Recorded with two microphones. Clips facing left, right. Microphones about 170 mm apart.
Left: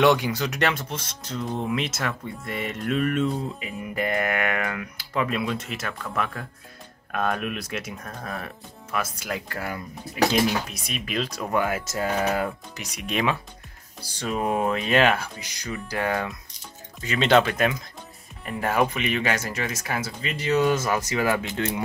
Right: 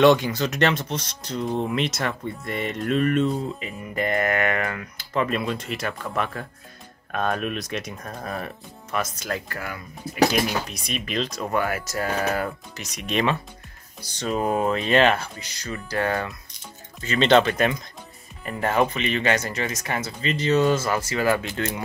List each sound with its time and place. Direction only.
0.0 s speech: 10° left (ahead or behind)
8.1 s speech: 5° right (ahead or behind)
9.5 s speech: 25° left (ahead or behind)
10.7 s speech: 5° left (ahead or behind)